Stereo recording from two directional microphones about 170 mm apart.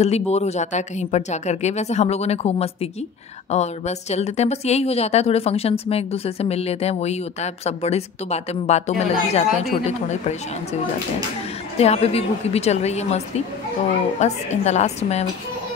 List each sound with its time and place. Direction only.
0.0 s a woman's voice: 40° left (ahead or behind)
11.8 s a woman's voice: 35° left (ahead or behind)
14.2 s a woman's voice: 40° left (ahead or behind)